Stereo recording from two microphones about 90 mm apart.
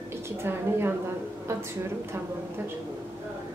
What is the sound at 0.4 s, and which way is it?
Speech, 25° right (ahead or behind).